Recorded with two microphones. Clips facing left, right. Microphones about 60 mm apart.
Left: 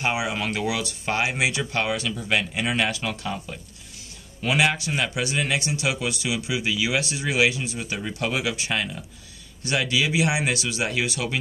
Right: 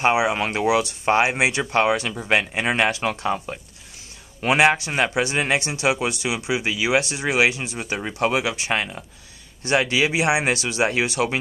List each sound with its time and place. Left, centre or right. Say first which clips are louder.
0.0 s speech: right 6 dB; right